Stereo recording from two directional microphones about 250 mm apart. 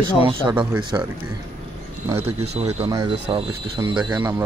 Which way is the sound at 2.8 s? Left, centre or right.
Centre.